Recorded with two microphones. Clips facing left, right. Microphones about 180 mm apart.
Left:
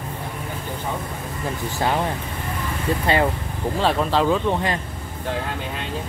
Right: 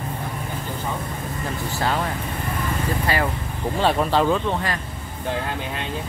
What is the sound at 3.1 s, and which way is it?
Speech, 25° left (ahead or behind).